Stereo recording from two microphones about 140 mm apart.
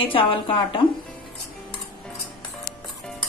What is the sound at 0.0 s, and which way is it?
Speech, 40° left (ahead or behind).